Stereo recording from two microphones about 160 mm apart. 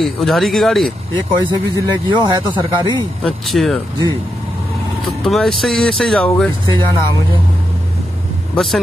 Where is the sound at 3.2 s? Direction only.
Centre (ahead or behind).